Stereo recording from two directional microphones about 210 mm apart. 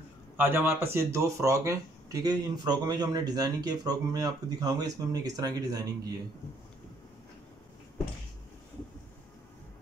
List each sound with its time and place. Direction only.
0.4 s speech: 10° right (ahead or behind)